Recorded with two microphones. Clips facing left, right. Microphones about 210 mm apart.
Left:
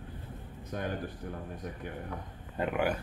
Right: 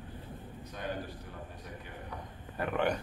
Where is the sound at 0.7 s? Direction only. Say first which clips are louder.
Left 6 dB; 50° left (ahead or behind).